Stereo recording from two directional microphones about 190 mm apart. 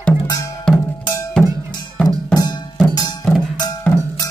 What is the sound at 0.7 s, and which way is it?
Music, 5° left (ahead or behind).